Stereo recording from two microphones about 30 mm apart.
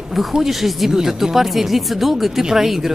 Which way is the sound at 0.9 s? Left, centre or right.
Centre.